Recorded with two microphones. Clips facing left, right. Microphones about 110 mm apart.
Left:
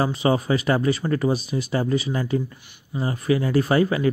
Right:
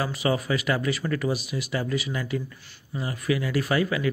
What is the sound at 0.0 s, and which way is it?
Speech, 30° left (ahead or behind).